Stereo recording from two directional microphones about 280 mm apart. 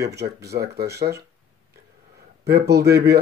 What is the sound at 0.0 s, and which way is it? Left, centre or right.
Speech, right.